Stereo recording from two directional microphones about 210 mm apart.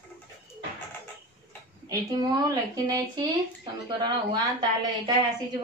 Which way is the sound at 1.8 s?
20° right (ahead or behind).